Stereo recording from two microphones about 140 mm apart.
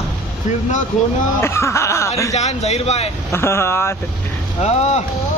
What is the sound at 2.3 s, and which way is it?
Speech, 50° left (ahead or behind).